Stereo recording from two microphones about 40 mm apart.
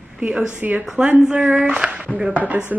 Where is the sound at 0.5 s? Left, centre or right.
Right.